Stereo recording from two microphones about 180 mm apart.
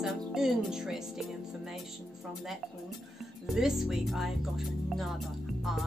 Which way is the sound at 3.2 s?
Centre (ahead or behind).